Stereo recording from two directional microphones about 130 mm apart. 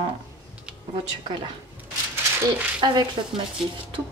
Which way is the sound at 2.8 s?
35° right (ahead or behind).